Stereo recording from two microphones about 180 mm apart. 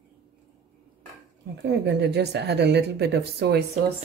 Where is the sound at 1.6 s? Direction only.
70° right (ahead or behind).